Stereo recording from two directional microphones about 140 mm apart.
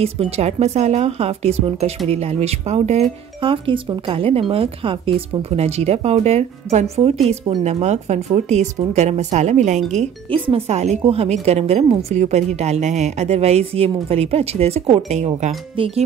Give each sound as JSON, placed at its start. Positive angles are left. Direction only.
{"t": 0.0, "sound": "speech", "side_deg": -45}
{"t": 10.3, "sound": "speech", "side_deg": -40}